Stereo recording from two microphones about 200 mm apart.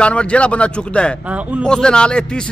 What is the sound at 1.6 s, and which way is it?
Speech, 5° left (ahead or behind).